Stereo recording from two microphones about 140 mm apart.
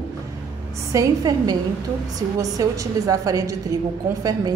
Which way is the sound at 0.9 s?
25° right (ahead or behind).